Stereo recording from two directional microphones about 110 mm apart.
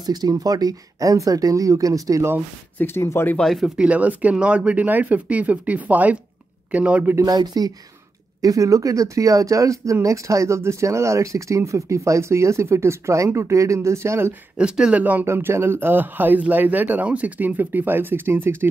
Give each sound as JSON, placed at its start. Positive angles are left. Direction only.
{"t": 0.0, "sound": "speech", "side_deg": -35}
{"t": 2.8, "sound": "speech", "side_deg": 25}
{"t": 3.3, "sound": "speech", "side_deg": 0}
{"t": 7.2, "sound": "speech", "side_deg": -35}
{"t": 14.6, "sound": "speech", "side_deg": -10}